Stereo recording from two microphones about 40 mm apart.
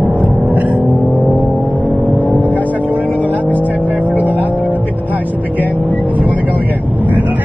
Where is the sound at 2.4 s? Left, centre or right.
Left.